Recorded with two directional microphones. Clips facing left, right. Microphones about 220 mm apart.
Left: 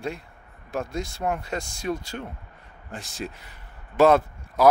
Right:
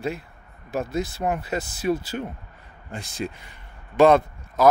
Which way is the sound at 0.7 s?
5° right (ahead or behind).